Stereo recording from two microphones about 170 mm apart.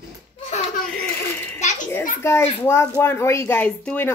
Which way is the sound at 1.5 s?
45° left (ahead or behind).